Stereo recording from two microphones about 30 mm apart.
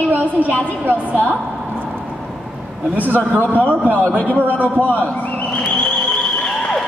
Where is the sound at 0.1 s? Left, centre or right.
Right.